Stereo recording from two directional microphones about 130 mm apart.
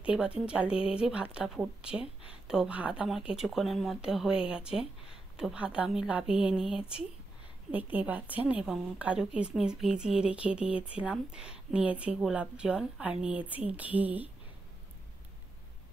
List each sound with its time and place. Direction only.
0.0 s a woman's voice: 10° right (ahead or behind)